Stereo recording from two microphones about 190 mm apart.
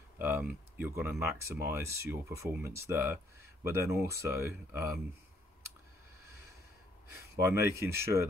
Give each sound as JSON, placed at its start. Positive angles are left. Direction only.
{"t": 0.2, "sound": "speech", "side_deg": -10}
{"t": 7.3, "sound": "speech", "side_deg": -15}